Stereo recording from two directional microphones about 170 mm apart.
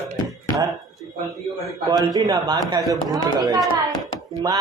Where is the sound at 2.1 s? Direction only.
20° right (ahead or behind).